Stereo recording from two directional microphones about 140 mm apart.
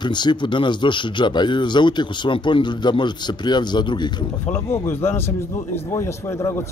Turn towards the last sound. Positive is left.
turn(degrees=20)  # may be behind; listen again after turning